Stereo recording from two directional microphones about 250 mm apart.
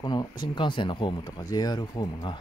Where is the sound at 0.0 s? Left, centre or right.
Centre.